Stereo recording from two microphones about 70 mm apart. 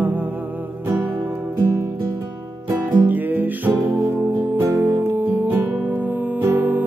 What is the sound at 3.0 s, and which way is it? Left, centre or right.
Music, right.